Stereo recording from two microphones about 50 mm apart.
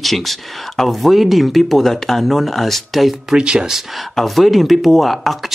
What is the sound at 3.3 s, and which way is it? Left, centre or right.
Speech, centre.